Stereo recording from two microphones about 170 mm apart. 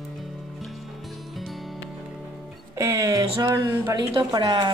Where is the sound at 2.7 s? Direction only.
15° right (ahead or behind).